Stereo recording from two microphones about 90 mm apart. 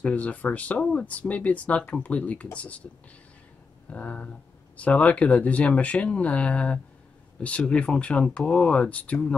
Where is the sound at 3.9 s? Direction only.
15° left (ahead or behind).